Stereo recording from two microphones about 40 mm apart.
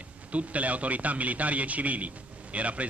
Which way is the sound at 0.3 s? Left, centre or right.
Right.